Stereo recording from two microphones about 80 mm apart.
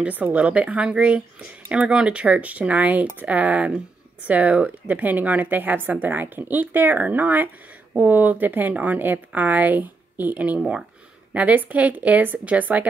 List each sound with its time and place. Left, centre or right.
0.0 s speech: centre